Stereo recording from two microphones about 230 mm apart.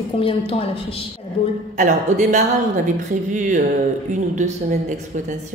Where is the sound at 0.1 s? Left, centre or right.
Left.